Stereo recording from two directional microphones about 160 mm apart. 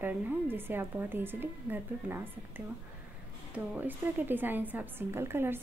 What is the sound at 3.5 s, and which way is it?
A woman's voice, 10° right (ahead or behind).